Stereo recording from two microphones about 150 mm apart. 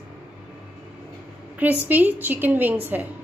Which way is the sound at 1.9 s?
10° right (ahead or behind).